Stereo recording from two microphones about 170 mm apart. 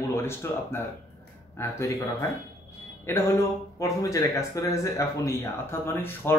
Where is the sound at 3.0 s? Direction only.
15° left (ahead or behind).